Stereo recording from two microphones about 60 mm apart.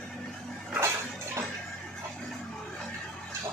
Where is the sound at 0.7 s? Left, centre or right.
Right.